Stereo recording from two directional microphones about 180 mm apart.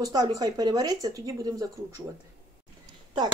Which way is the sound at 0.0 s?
20° right (ahead or behind).